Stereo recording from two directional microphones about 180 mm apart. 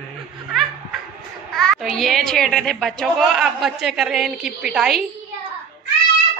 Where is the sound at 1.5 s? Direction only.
Centre (ahead or behind).